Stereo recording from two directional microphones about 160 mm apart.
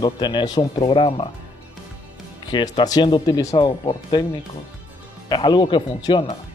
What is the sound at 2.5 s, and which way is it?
Speech, 25° left (ahead or behind).